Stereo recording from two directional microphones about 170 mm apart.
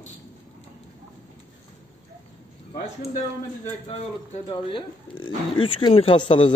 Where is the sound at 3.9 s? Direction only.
30° left (ahead or behind).